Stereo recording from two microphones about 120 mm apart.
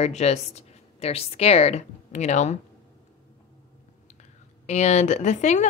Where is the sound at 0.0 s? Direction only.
65° left (ahead or behind).